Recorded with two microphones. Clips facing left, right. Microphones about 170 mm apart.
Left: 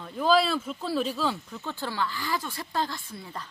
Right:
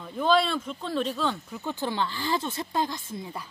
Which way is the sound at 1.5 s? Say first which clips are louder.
Right 4 dB; 15° right (ahead or behind).